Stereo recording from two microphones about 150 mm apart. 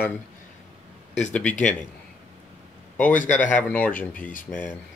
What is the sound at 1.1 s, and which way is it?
Speech, 5° left (ahead or behind).